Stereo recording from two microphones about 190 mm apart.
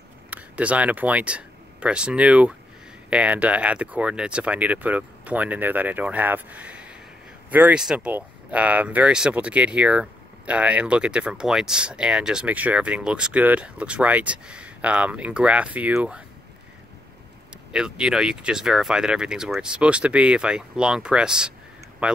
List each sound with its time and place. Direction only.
0.3 s speech: 5° right (ahead or behind)
17.7 s speech: 5° right (ahead or behind)